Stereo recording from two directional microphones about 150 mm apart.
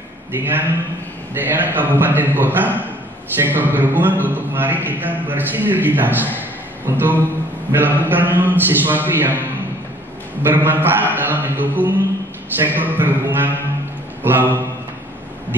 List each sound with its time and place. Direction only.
0.4 s a man's voice: 15° right (ahead or behind)
10.4 s a man's voice: 15° right (ahead or behind)